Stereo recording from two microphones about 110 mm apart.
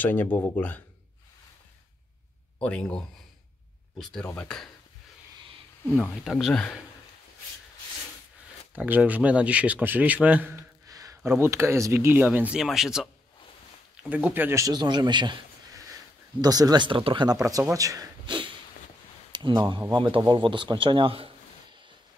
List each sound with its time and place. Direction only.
0.0 s speech: 15° left (ahead or behind)
2.6 s speech: 10° left (ahead or behind)
4.0 s speech: 5° left (ahead or behind)
5.9 s speech: 5° right (ahead or behind)
8.7 s a man's voice: 15° right (ahead or behind)
10.9 s a sound: 30° right (ahead or behind)
11.2 s speech: 20° right (ahead or behind)
12.5 s speech: 5° right (ahead or behind)
14.0 s a man's voice: 15° right (ahead or behind)
14.6 s speech: 40° right (ahead or behind)
16.3 s speech: 35° right (ahead or behind)
17.4 s speech: 30° right (ahead or behind)
18.2 s a sound: 45° right (ahead or behind)
19.5 s speech: 45° right (ahead or behind)